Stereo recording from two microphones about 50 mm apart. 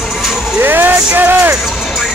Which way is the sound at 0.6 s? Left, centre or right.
Right.